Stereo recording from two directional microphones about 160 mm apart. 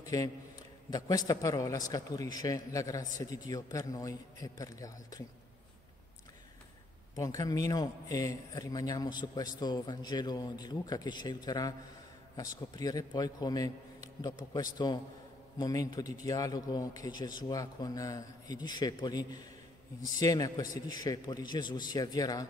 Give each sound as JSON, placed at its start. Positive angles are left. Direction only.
{"t": 0.0, "sound": "a man's voice", "side_deg": 20}
{"t": 7.2, "sound": "a man's voice", "side_deg": 20}